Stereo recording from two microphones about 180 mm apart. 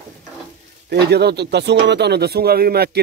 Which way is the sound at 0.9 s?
65° right (ahead or behind).